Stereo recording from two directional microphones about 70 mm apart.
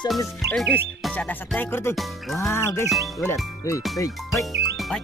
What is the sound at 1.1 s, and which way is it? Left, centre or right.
Music, centre.